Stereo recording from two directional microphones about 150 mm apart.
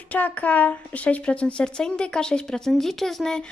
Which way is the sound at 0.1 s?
10° left (ahead or behind).